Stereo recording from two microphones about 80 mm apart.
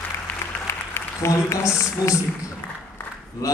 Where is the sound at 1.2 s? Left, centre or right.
Left.